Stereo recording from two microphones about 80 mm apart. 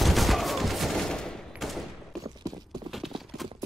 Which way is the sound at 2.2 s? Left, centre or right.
Right.